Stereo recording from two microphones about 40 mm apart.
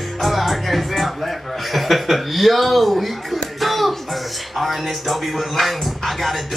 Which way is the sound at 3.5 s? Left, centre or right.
Centre.